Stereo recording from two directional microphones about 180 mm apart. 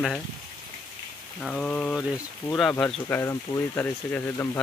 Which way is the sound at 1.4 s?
5° left (ahead or behind).